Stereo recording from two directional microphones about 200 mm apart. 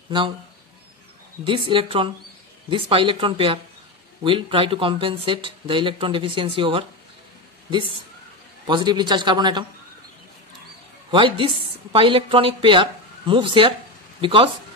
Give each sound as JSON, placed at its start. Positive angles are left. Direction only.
{"t": 1.4, "sound": "speech", "side_deg": -25}
{"t": 8.6, "sound": "speech", "side_deg": -20}
{"t": 11.1, "sound": "speech", "side_deg": -25}